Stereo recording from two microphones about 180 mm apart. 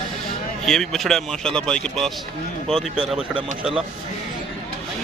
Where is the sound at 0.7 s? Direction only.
Centre (ahead or behind).